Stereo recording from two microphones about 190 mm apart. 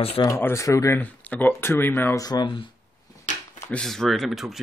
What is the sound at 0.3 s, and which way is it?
Speech, 15° left (ahead or behind).